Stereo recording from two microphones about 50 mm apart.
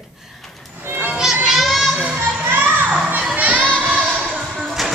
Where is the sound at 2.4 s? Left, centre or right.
Right.